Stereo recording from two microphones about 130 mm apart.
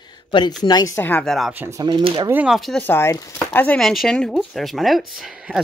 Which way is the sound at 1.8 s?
35° right (ahead or behind).